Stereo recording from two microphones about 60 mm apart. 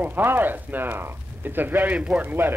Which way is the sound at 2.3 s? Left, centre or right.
Right.